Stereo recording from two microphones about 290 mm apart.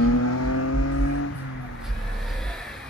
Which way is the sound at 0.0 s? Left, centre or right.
Left.